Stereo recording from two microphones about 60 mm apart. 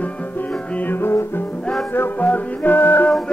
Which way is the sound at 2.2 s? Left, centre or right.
Left.